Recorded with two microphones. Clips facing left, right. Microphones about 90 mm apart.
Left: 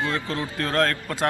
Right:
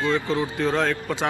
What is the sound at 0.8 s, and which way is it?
Speech, 5° right (ahead or behind).